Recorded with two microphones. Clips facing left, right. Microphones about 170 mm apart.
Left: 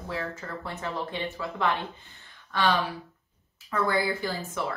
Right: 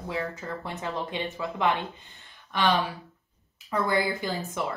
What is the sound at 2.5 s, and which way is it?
Speech, 15° right (ahead or behind).